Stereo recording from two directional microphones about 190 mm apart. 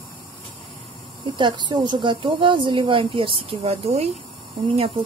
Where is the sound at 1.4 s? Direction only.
25° right (ahead or behind).